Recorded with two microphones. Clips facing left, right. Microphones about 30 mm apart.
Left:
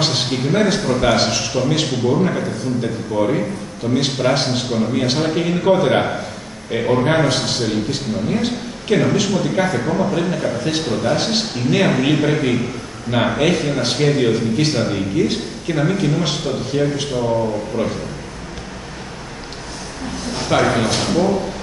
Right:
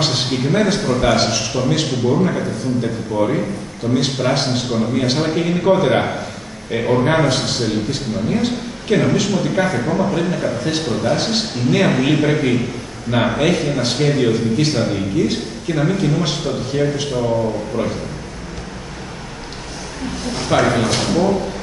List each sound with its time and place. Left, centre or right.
0.0 s a man's voice: centre
20.3 s a man's voice: centre